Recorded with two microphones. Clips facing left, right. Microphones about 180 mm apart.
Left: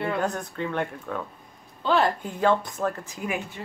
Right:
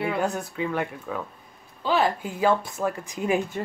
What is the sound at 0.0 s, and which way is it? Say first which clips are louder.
Speech: right 1 dB; 10° right (ahead or behind).